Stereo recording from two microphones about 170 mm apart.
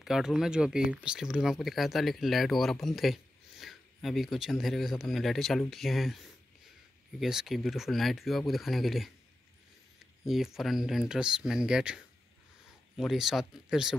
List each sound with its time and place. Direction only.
0.0 s speech: 5° right (ahead or behind)
10.2 s speech: centre (ahead or behind)